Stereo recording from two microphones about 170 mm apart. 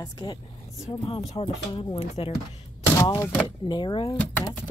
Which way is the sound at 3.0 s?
20° left (ahead or behind).